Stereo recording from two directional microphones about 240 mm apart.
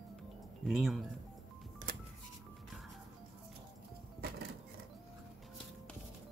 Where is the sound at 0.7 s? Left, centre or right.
Centre.